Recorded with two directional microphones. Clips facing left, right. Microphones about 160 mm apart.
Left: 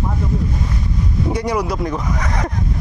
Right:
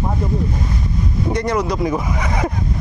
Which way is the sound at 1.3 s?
10° left (ahead or behind).